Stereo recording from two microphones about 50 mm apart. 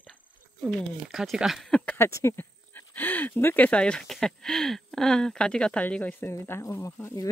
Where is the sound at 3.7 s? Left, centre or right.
Centre.